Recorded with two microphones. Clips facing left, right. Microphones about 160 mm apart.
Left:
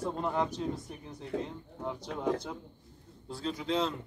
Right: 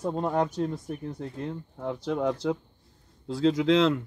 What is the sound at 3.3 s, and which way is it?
Speech, 90° right.